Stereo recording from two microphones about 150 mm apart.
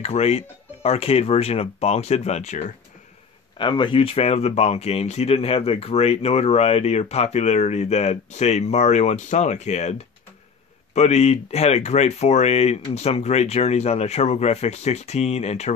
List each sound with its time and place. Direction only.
0.0 s speech: 45° left (ahead or behind)
3.5 s speech: 30° left (ahead or behind)